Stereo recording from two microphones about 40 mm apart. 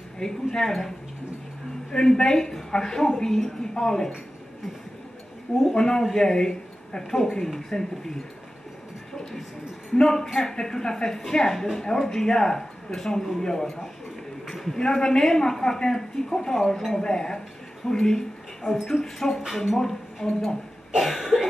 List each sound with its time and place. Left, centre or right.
0.2 s a woman's voice: centre
5.8 s a man's voice: centre
9.1 s a sound: centre
9.9 s a woman's voice: centre
14.5 s a sound: centre
14.8 s a woman's voice: centre
21.0 s cough: centre